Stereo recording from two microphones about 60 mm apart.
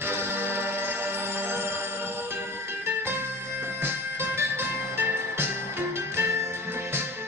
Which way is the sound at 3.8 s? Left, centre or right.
Right.